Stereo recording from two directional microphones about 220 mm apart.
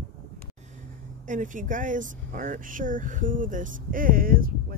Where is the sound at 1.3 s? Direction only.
35° right (ahead or behind).